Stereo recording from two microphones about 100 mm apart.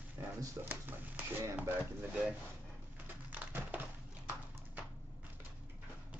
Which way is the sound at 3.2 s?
15° right (ahead or behind).